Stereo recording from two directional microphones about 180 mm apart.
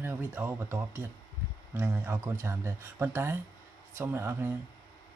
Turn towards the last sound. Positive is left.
turn(degrees=-15)  # may be behind; listen again after turning